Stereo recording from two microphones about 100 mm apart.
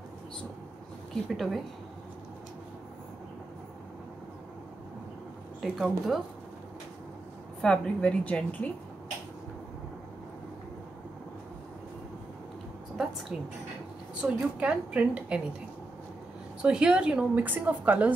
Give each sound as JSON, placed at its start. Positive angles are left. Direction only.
{"t": 1.1, "sound": "speech", "side_deg": 0}
{"t": 5.6, "sound": "speech", "side_deg": 0}
{"t": 7.6, "sound": "a woman's voice", "side_deg": 10}
{"t": 14.2, "sound": "a woman's voice", "side_deg": -10}
{"t": 16.6, "sound": "a woman's voice", "side_deg": -10}